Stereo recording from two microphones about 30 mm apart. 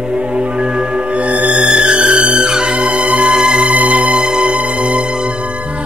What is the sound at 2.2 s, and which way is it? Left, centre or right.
Music, right.